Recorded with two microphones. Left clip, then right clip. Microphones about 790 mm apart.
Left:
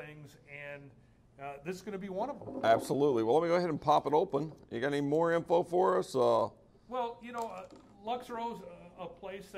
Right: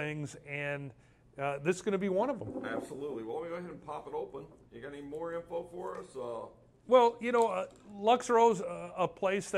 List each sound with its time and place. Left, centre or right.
0.0 s speech: right
2.6 s speech: left
6.9 s speech: right